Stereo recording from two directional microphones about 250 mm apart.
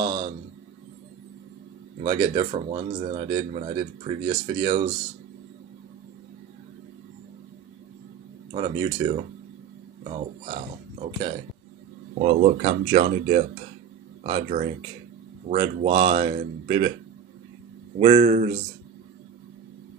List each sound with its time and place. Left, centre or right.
2.0 s speech: centre
8.5 s speech: right
11.0 s speech: right
17.9 s speech: right